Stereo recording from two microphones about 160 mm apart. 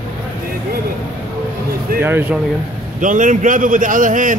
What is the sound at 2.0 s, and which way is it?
Speech, 15° right (ahead or behind).